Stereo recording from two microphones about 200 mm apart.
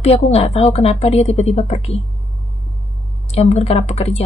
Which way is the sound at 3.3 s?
30° left (ahead or behind).